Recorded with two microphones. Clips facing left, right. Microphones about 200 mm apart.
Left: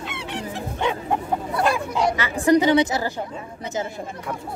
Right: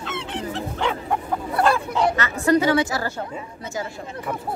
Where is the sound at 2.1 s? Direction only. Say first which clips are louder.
Left 4 dB; 15° left (ahead or behind).